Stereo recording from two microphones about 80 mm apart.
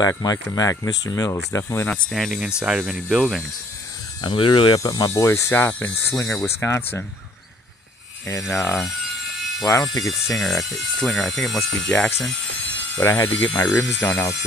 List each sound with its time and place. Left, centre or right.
0.2 s speech: left
1.9 s speech: centre
2.4 s speech: centre
4.2 s speech: left
4.7 s speech: left
5.7 s speech: left
8.7 s a sound: centre
10.0 s speech: centre
13.0 s speech: left